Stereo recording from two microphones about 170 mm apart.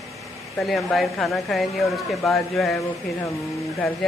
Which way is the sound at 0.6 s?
Centre (ahead or behind).